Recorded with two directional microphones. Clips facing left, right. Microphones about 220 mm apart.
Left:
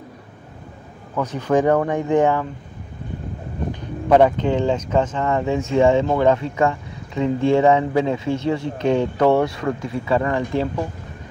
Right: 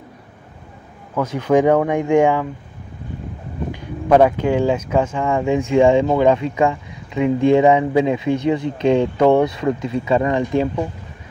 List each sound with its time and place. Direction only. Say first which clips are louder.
1.1 s speech: right 3 dB; 10° right (ahead or behind)
4.1 s speech: right 1 dB; 10° right (ahead or behind)